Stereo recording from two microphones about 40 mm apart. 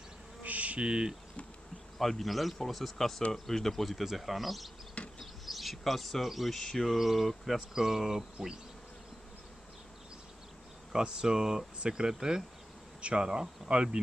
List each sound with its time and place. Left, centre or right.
0.4 s insect: right
2.0 s speech: centre
7.0 s speech: centre
10.9 s speech: centre